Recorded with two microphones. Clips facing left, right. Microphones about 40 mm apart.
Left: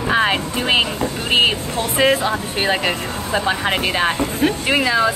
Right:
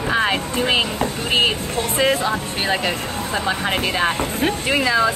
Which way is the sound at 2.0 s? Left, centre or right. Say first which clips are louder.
Left 3 dB; left.